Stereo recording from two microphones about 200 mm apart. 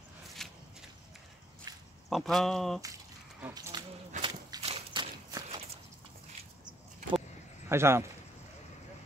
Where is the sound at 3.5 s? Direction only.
20° right (ahead or behind).